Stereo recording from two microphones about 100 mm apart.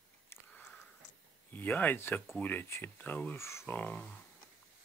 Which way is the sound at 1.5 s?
20° left (ahead or behind).